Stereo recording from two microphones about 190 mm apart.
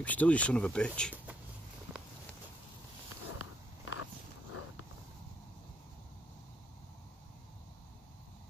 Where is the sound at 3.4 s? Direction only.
90° left.